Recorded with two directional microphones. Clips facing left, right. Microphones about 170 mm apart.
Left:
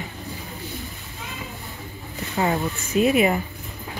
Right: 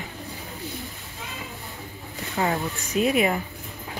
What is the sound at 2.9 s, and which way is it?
Speech, centre (ahead or behind).